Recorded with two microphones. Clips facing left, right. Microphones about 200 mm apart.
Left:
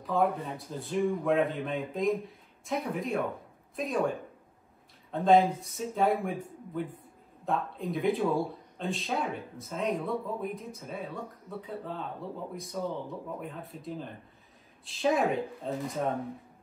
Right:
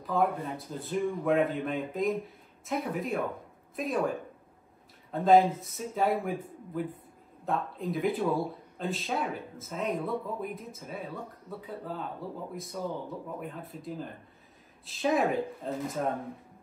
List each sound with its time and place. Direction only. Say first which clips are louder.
0.0 s speech: even; centre (ahead or behind)
5.1 s speech: right 1 dB; centre (ahead or behind)